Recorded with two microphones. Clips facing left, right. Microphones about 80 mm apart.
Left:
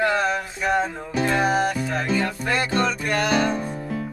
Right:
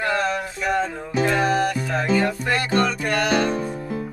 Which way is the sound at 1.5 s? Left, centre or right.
Left.